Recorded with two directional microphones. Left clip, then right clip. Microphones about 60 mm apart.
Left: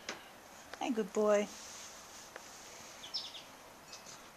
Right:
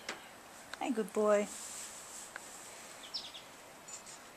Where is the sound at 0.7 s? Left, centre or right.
Centre.